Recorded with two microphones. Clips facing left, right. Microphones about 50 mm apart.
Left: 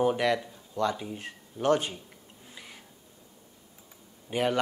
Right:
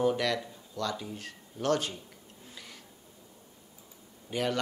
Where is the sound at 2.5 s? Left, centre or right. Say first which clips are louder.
Left 1 dB; centre.